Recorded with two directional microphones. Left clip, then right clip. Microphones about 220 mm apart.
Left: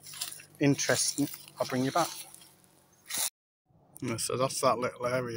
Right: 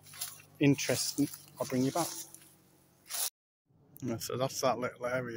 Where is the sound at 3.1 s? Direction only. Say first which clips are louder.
Left 4 dB; 35° left (ahead or behind).